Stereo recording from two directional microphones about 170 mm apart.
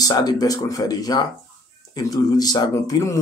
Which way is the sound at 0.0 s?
25° left (ahead or behind).